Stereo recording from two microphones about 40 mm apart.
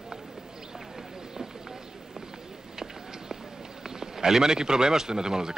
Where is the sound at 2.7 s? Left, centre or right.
Centre.